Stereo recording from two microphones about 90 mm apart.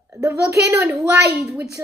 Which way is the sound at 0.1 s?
35° right (ahead or behind).